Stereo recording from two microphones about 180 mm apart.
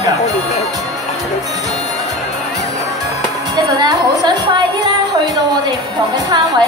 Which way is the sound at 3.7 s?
25° right (ahead or behind).